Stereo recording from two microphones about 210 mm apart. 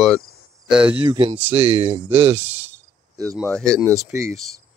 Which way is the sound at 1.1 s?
25° right (ahead or behind).